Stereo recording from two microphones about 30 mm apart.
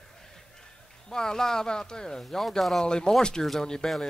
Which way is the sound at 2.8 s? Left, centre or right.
Left.